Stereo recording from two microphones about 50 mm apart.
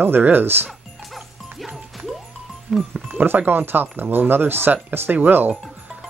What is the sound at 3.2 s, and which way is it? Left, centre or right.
Speech, right.